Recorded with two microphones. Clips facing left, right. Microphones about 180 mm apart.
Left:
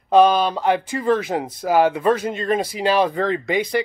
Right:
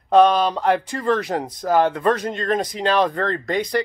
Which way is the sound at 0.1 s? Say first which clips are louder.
Even; centre (ahead or behind).